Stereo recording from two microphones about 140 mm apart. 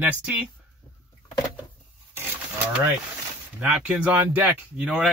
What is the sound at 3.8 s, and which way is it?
Speech, 10° right (ahead or behind).